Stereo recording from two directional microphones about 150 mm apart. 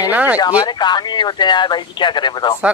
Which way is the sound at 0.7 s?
30° left (ahead or behind).